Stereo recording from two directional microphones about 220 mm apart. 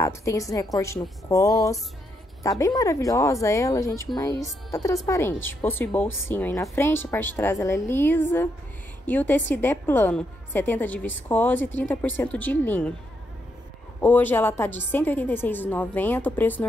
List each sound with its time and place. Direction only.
0.0 s a woman's voice: 15° left (ahead or behind)
14.0 s a woman's voice: 10° left (ahead or behind)